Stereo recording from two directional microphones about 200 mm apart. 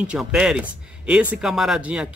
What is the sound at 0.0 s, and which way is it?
Speech, 5° right (ahead or behind).